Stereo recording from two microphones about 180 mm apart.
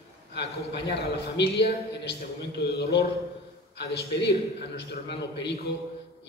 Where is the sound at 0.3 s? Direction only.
70° left (ahead or behind).